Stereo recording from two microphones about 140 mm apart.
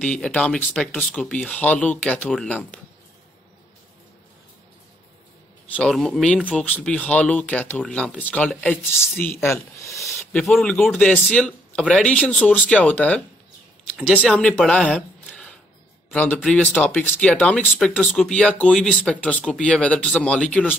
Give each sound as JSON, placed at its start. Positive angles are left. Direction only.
{"t": 0.0, "sound": "speech", "side_deg": 5}
{"t": 5.8, "sound": "speech", "side_deg": 0}
{"t": 9.9, "sound": "speech", "side_deg": 0}
{"t": 14.3, "sound": "speech", "side_deg": 5}